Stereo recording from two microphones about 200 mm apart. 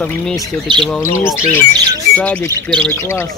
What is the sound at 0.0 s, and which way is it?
Speech, 10° left (ahead or behind).